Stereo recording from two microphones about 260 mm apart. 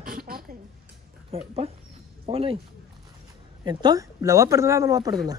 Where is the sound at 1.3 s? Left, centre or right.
Right.